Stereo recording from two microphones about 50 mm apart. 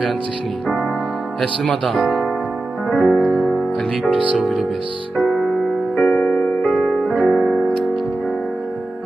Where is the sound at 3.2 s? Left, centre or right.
Right.